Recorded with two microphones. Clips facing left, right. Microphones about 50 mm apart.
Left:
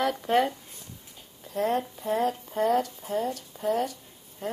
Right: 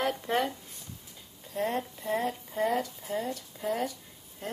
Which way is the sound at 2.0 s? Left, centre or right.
Left.